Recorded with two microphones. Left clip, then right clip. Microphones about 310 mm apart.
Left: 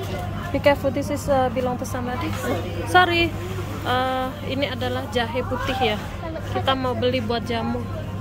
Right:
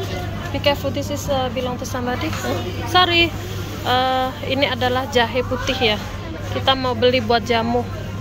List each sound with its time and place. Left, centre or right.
0.7 s speech: centre
2.9 s speech: centre